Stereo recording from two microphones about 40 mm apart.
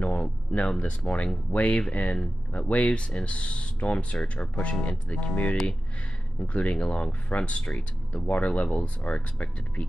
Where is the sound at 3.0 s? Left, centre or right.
Left.